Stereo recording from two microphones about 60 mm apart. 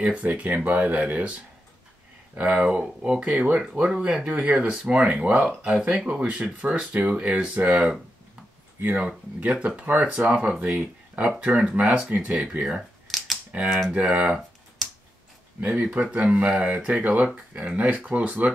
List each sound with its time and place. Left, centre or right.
0.0 s speech: right
13.1 s computer keyboard: centre
13.5 s speech: right
15.6 s speech: right